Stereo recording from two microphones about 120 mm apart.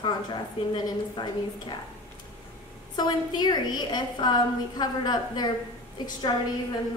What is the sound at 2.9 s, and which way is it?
A woman's voice, 35° left (ahead or behind).